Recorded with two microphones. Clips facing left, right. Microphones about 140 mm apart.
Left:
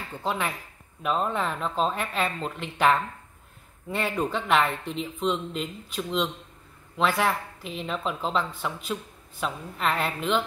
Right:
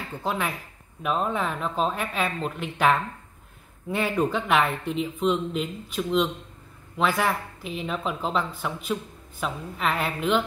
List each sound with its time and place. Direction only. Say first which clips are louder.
0.1 s speech: right 1 dB; 5° right (ahead or behind)